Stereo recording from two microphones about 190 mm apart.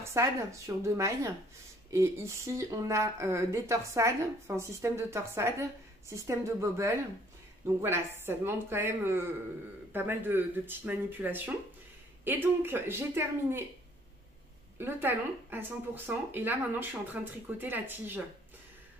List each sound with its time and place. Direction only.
0.0 s speech: 15° right (ahead or behind)
14.8 s speech: 10° right (ahead or behind)